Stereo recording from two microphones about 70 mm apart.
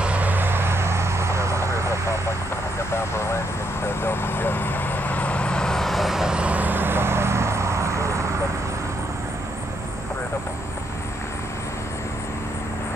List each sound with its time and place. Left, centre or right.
0.0 s vehicle: right
3.8 s vehicle: left; by 8.3 s right